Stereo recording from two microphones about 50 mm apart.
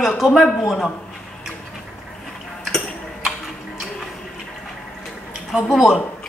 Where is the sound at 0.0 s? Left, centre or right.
Centre.